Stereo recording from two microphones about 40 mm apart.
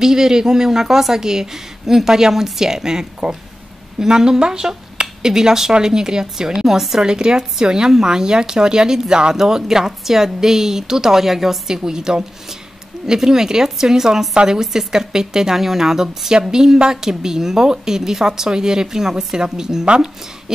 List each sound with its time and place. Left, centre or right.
0.0 s speech: centre
7.0 s speech: centre